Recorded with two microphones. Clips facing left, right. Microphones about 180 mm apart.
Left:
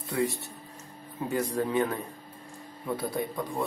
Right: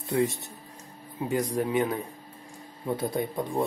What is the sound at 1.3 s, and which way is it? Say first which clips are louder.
Speech: right 1 dB; 15° right (ahead or behind).